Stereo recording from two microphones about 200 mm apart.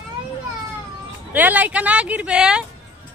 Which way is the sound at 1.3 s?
10° right (ahead or behind).